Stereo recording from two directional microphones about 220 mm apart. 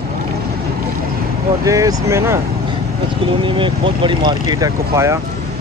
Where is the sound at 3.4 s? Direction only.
20° right (ahead or behind).